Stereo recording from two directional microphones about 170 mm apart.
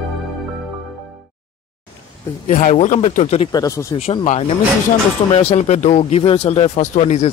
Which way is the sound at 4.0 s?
35° left (ahead or behind).